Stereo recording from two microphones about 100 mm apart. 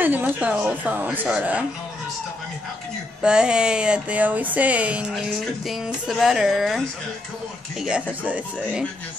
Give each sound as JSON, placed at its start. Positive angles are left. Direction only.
{"t": 0.0, "sound": "speech", "side_deg": -20}
{"t": 3.2, "sound": "speech", "side_deg": -10}
{"t": 5.3, "sound": "a woman's voice", "side_deg": 0}
{"t": 7.8, "sound": "speech", "side_deg": -10}